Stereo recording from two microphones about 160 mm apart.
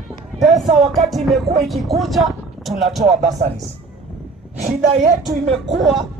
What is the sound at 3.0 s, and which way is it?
Speech, 45° right (ahead or behind).